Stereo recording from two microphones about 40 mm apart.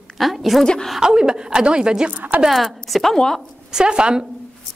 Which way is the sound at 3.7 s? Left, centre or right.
Right.